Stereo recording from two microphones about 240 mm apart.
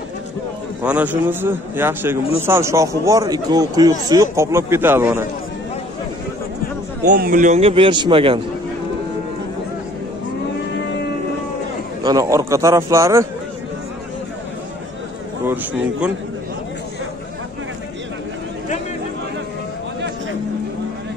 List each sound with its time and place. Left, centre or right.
0.8 s a man's voice: centre
7.1 s a man's voice: right
12.0 s a man's voice: centre
15.4 s a man's voice: centre